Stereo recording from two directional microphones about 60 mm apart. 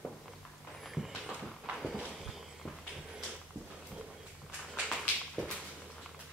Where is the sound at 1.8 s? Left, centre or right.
Centre.